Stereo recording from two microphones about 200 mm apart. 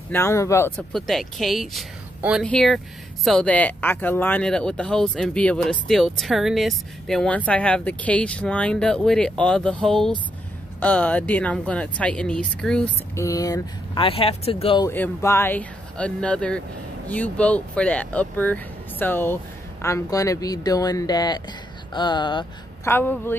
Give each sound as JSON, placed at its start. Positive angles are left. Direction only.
{"t": 0.1, "sound": "speech", "side_deg": 15}
{"t": 13.1, "sound": "speech", "side_deg": 15}
{"t": 14.9, "sound": "speech", "side_deg": 10}
{"t": 22.8, "sound": "speech", "side_deg": 10}